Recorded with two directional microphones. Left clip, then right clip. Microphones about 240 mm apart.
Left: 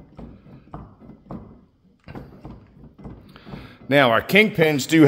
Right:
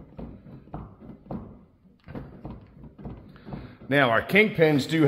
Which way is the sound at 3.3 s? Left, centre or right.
Left.